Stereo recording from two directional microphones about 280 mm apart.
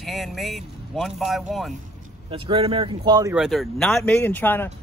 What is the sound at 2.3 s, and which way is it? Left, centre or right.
Speech, centre.